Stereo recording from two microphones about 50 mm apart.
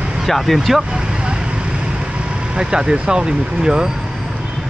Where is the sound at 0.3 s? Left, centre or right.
Centre.